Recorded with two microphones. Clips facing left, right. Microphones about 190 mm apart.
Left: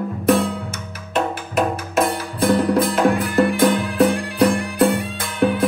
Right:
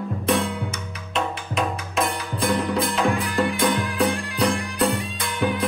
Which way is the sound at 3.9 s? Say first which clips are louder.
Left 6 dB; 55° left (ahead or behind).